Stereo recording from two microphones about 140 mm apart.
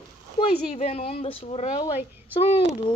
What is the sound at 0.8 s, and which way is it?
Speech, 50° left (ahead or behind).